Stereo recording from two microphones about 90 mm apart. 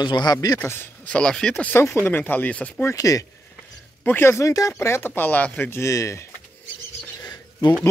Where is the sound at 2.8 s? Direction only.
35° left (ahead or behind).